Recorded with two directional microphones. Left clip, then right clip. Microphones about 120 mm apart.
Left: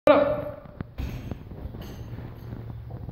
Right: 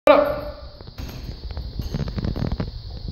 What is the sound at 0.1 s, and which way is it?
Speech, 5° right (ahead or behind).